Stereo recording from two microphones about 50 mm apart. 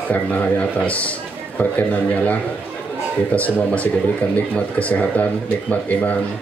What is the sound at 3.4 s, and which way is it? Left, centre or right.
Speech, left.